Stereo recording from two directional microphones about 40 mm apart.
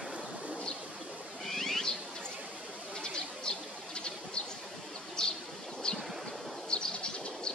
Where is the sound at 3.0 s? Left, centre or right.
Left.